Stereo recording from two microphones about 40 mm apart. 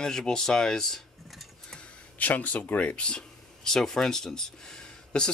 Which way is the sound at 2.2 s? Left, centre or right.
Left.